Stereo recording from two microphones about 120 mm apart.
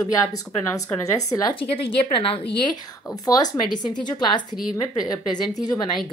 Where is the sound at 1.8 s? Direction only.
50° left (ahead or behind).